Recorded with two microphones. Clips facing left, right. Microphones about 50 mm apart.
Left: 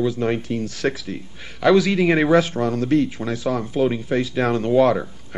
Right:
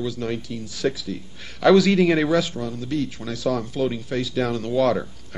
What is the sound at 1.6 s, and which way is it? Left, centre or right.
Speech, centre.